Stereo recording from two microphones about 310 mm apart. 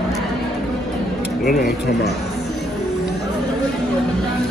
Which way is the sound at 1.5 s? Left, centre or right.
Left.